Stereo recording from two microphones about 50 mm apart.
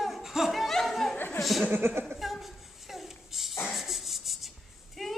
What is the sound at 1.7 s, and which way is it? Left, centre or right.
Speech, right.